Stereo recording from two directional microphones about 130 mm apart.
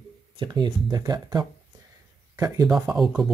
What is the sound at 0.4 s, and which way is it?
Speech, 35° right (ahead or behind).